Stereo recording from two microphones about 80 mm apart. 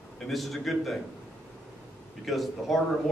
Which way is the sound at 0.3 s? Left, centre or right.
Centre.